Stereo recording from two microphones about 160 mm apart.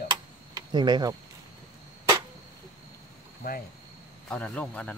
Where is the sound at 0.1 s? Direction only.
25° right (ahead or behind).